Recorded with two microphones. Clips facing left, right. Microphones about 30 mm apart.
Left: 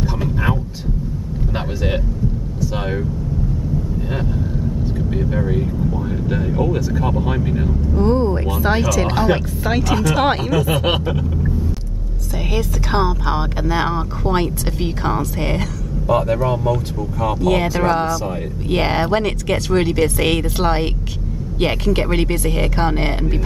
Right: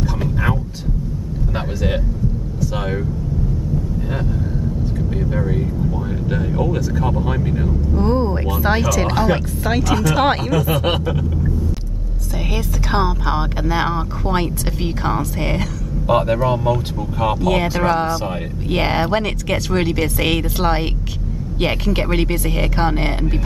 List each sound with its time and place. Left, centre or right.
0.2 s a sound: centre
2.7 s speech: centre
4.9 s speech: centre
7.9 s speech: centre
12.5 s speech: centre
16.1 s speech: right
17.4 s speech: centre
18.0 s speech: right
18.7 s speech: centre